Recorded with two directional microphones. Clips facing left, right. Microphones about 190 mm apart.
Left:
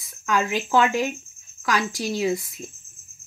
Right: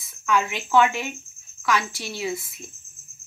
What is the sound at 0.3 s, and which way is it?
Speech, 35° left (ahead or behind).